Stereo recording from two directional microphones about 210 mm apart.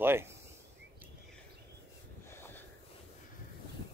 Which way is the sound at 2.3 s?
10° left (ahead or behind).